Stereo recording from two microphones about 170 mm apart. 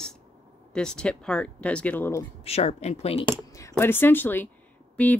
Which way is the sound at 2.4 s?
40° left (ahead or behind).